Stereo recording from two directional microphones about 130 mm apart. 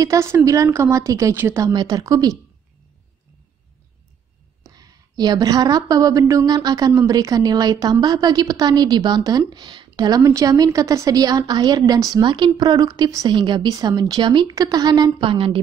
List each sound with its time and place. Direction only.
0.0 s a woman's voice: 25° right (ahead or behind)
1.7 s a woman's voice: 30° right (ahead or behind)
4.6 s a woman's voice: 30° right (ahead or behind)